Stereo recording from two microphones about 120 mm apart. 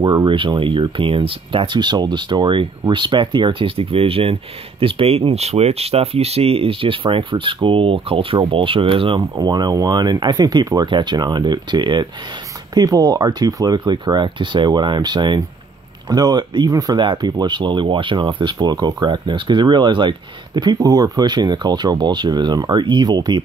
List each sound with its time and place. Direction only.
0.0 s speech: 35° right (ahead or behind)